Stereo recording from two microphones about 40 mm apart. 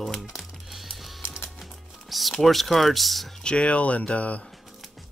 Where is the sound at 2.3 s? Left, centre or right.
Centre.